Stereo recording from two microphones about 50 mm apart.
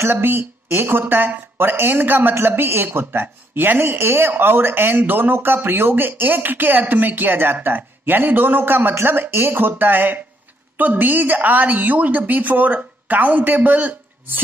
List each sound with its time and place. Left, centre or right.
0.0 s a woman's voice: right